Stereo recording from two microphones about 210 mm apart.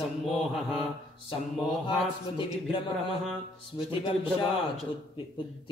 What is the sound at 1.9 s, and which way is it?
Speech, 25° left (ahead or behind).